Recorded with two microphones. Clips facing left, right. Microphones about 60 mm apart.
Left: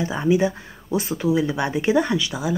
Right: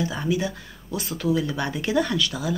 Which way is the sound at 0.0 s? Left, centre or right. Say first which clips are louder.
Left 6 dB; left.